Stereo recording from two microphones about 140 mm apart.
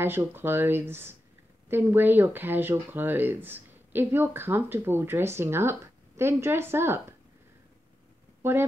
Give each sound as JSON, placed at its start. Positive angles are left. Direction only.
{"t": 0.0, "sound": "speech", "side_deg": -15}
{"t": 8.4, "sound": "speech", "side_deg": -15}